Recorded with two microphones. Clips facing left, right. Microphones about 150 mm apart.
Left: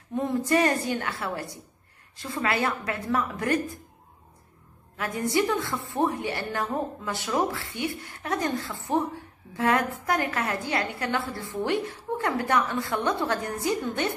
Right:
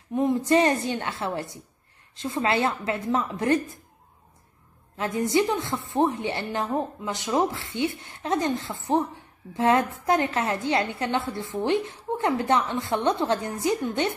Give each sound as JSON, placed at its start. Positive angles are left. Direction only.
{"t": 0.1, "sound": "a woman's voice", "side_deg": -15}
{"t": 4.9, "sound": "a woman's voice", "side_deg": -20}